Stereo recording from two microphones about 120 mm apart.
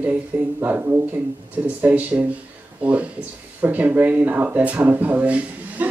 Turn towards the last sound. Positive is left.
turn(degrees=-10)  # may be behind; listen again after turning